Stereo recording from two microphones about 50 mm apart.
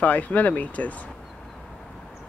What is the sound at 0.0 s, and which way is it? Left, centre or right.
Speech, left.